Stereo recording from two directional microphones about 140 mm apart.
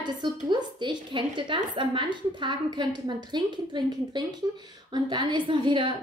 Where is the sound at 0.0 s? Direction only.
30° right (ahead or behind).